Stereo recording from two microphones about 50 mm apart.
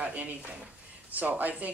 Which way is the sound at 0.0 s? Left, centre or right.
Right.